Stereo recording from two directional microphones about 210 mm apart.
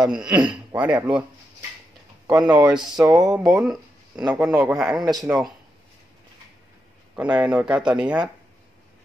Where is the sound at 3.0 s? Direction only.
15° right (ahead or behind).